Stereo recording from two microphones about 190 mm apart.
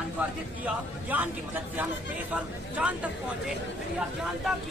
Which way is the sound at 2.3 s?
5° right (ahead or behind).